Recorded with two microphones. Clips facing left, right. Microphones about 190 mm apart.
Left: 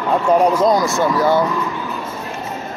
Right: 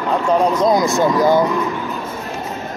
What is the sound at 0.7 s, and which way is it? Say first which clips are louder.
Speech: right 2 dB; 15° right (ahead or behind).